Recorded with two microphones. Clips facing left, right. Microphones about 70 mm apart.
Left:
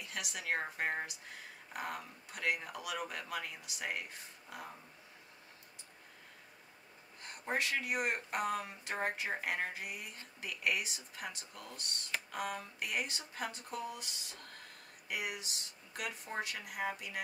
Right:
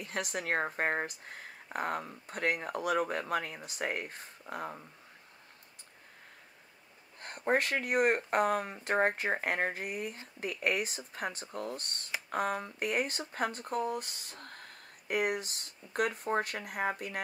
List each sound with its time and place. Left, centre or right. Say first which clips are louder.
0.0 s speech: right 6 dB; right
7.2 s speech: right 7 dB; right